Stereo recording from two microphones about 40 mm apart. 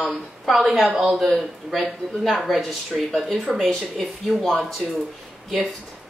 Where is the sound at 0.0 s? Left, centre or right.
Centre.